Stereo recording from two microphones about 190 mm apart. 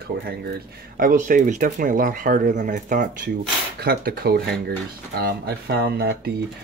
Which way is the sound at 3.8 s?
55° right (ahead or behind).